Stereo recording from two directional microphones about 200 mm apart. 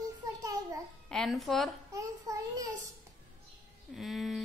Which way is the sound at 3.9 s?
Centre (ahead or behind).